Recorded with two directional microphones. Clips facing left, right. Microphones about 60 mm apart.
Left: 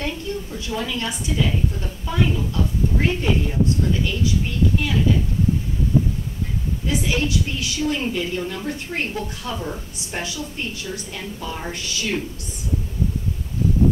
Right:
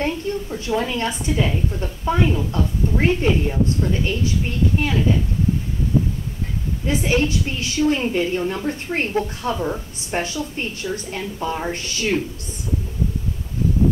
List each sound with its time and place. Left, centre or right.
0.0 s a woman's voice: right
6.9 s a woman's voice: right
9.6 s speech: right
10.2 s a woman's voice: right